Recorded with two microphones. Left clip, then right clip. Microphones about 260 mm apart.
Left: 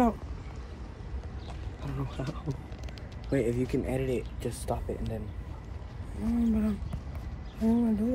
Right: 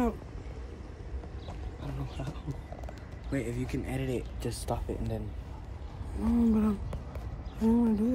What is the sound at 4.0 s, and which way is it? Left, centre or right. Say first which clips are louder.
Speech: left 3 dB; centre.